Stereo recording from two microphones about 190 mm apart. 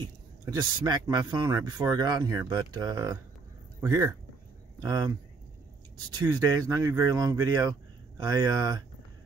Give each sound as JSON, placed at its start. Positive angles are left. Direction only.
{"t": 0.6, "sound": "speech", "side_deg": -20}
{"t": 6.1, "sound": "speech", "side_deg": -20}